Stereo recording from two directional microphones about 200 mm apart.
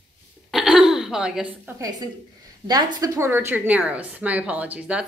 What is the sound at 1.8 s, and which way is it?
A woman's voice, 20° right (ahead or behind).